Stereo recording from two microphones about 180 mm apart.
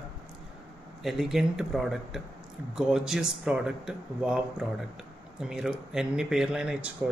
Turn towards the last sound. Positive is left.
turn(degrees=-5)  # may be behind; listen again after turning